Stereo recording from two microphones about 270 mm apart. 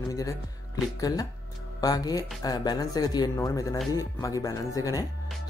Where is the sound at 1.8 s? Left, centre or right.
Centre.